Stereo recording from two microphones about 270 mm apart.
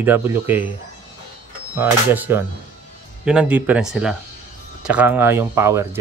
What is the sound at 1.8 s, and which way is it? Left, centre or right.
Speech, centre.